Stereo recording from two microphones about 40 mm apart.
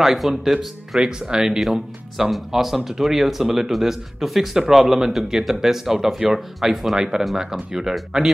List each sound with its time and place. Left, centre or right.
0.0 s speech: centre